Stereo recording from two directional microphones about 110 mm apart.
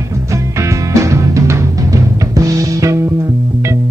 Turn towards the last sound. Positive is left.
turn(degrees=-30)  # may be behind; listen again after turning